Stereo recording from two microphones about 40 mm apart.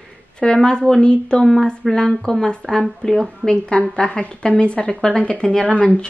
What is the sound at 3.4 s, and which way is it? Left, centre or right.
A woman's voice, left.